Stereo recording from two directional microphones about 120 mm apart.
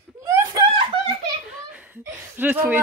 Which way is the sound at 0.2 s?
25° right (ahead or behind).